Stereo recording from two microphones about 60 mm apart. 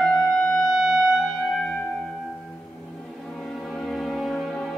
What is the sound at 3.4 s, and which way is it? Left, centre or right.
Music, centre.